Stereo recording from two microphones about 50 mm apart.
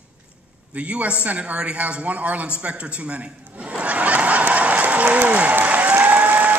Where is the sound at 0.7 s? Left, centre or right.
Right.